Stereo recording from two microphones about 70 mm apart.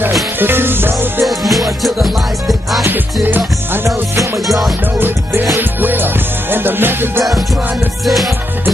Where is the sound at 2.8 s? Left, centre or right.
Right.